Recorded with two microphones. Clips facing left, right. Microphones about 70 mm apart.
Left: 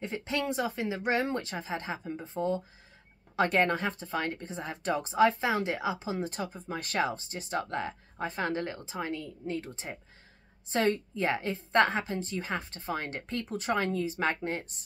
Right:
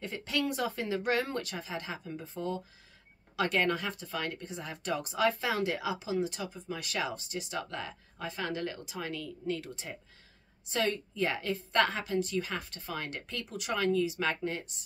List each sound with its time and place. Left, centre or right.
0.0 s speech: left